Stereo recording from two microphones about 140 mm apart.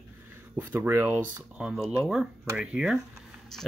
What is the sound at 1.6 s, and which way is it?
Speech, 5° right (ahead or behind).